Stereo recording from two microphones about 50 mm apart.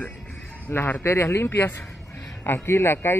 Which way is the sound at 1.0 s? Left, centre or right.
Left.